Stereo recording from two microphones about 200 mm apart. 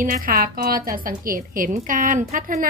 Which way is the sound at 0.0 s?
45° right (ahead or behind).